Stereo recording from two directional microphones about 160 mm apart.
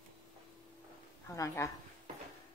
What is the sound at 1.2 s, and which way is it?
Speech, 20° left (ahead or behind).